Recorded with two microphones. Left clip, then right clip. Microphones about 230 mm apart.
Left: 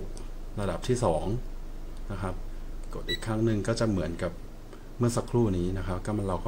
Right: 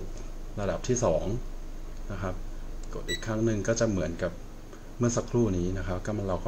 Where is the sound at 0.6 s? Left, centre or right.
Centre.